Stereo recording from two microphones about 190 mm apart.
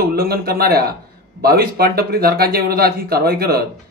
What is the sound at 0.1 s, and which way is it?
Speech, 55° right (ahead or behind).